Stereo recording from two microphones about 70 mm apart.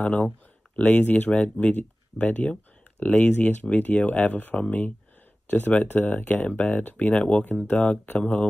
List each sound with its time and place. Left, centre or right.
0.0 s speech: left